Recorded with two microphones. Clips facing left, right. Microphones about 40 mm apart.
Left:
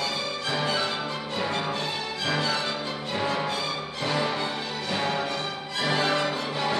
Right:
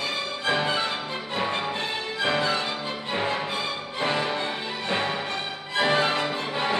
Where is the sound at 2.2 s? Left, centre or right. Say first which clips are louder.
Right 3 dB; right.